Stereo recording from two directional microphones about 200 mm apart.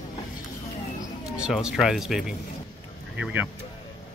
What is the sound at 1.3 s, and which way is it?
Speech, 5° right (ahead or behind).